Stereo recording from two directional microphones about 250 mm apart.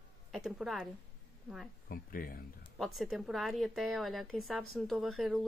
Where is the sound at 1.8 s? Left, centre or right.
Left.